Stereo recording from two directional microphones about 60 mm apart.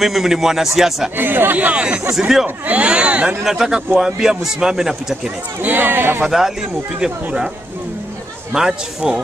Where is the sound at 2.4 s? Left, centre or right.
Right; by 5.3 s centre.